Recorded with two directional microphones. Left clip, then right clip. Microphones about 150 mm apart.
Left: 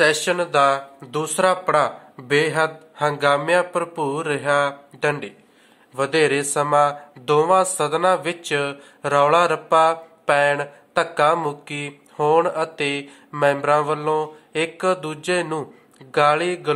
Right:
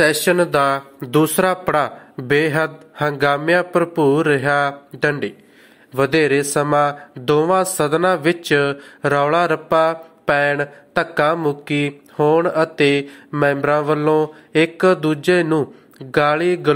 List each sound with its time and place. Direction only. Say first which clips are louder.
0.0 s speech: right 3 dB; 35° right (ahead or behind)